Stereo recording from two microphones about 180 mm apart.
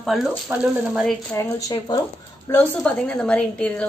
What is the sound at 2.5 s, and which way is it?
Speech, 10° left (ahead or behind).